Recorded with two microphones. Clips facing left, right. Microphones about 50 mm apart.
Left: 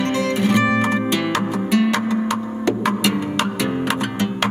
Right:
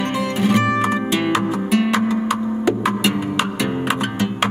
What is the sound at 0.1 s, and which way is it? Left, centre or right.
Music, centre.